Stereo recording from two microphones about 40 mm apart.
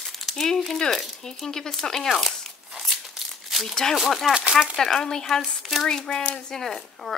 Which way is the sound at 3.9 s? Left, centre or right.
Centre.